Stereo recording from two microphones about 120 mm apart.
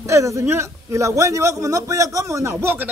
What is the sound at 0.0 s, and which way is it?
Speech, 25° right (ahead or behind).